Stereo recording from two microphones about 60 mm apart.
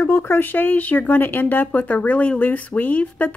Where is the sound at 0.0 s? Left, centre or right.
Left.